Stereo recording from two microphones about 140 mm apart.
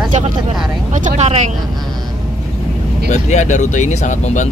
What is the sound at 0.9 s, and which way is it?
Speech, 55° right (ahead or behind).